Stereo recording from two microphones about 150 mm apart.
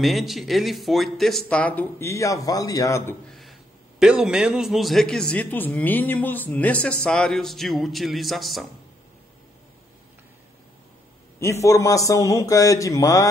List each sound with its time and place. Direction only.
0.0 s a man's voice: centre (ahead or behind); by 3.2 s 20° left (ahead or behind)
3.3 s a sound: centre (ahead or behind)
4.0 s a man's voice: 5° right (ahead or behind)
11.3 s a man's voice: 20° left (ahead or behind)